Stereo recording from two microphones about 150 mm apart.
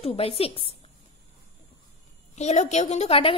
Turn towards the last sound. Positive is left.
turn(degrees=40)  # may be behind; listen again after turning